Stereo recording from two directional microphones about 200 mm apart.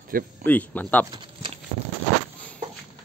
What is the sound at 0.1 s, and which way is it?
Speech, 45° right (ahead or behind).